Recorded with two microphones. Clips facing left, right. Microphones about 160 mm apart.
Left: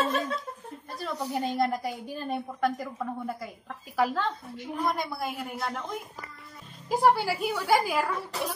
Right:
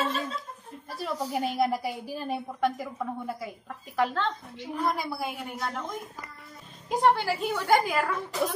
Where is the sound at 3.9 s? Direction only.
10° left (ahead or behind).